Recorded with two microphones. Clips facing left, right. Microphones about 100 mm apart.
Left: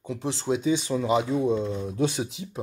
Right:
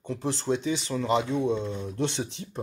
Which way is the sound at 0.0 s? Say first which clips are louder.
Even; centre (ahead or behind).